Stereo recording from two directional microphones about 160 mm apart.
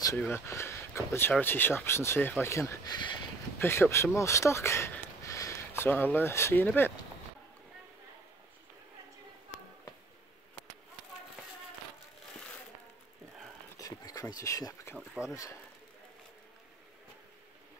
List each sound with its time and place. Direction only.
0.2 s speech: 15° left (ahead or behind)
13.7 s a sound: 20° left (ahead or behind)
14.3 s speech: 20° left (ahead or behind)
15.0 s speech: 5° right (ahead or behind)